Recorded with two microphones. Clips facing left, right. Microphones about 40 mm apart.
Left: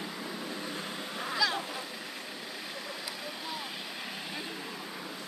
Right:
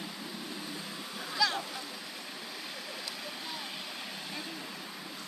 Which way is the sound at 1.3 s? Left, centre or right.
Centre.